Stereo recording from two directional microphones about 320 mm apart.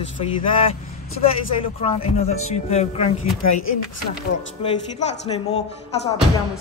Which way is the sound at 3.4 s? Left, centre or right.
Left.